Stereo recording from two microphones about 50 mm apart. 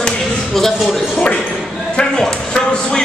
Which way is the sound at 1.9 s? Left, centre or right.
Centre.